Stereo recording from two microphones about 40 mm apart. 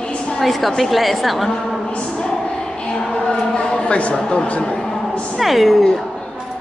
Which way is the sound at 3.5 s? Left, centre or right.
Left.